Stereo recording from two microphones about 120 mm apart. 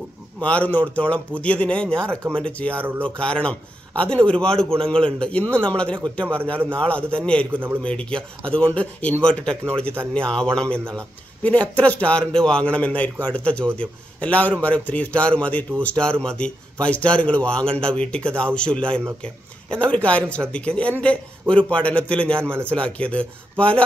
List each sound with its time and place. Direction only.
0.4 s a man's voice: 10° left (ahead or behind)
7.5 s a man's voice: 15° right (ahead or behind)
7.8 s a man's voice: 10° left (ahead or behind)